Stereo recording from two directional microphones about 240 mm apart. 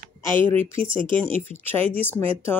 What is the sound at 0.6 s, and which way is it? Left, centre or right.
Speech, right.